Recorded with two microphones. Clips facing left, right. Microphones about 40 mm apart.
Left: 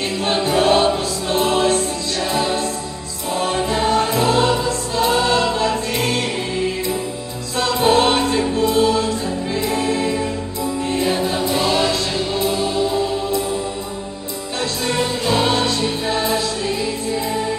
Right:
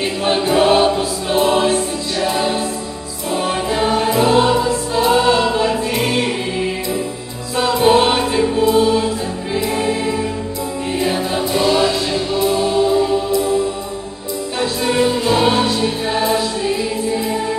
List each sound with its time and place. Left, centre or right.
0.0 s choir: centre
3.3 s music: centre
7.5 s choir: centre
10.9 s music: centre
12.5 s music: centre
14.6 s music: centre